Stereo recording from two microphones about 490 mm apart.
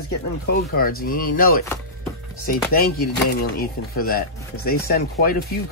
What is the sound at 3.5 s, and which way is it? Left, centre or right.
Speech, centre.